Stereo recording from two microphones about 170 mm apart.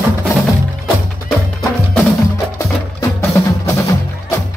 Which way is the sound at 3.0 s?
15° left (ahead or behind).